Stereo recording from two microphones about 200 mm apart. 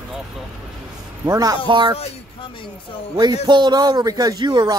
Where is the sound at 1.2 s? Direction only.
20° right (ahead or behind).